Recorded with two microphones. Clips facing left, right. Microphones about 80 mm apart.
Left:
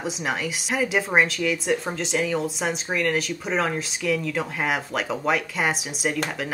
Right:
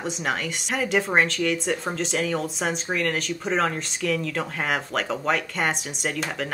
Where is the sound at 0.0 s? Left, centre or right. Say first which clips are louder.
Even; centre.